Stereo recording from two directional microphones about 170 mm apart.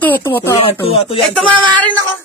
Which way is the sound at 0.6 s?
35° left (ahead or behind).